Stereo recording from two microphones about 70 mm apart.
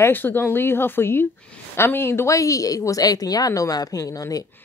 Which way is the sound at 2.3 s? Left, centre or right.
Left.